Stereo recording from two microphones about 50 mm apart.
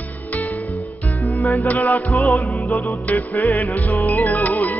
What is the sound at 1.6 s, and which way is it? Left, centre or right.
Music, left.